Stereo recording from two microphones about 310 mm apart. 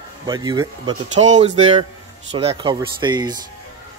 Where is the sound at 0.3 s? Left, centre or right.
Centre.